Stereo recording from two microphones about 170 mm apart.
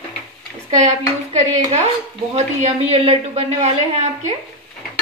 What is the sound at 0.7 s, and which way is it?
A woman's voice, 40° right (ahead or behind).